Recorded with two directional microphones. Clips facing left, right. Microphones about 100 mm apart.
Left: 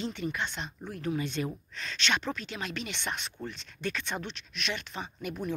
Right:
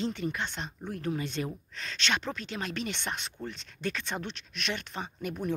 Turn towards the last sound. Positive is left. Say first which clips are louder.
# right 1 dB
turn(degrees=-40)  # may be behind; listen again after turning